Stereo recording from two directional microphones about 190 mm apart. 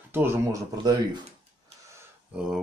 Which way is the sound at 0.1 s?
15° right (ahead or behind).